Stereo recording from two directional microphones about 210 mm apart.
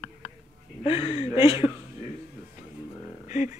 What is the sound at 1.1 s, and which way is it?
Speech, 25° left (ahead or behind).